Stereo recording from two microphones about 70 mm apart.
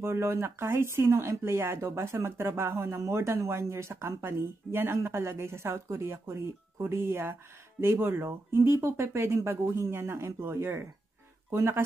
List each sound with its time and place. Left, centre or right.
0.0 s speech: right